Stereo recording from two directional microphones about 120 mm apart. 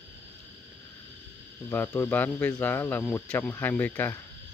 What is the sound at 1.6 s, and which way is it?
Speech, 20° left (ahead or behind).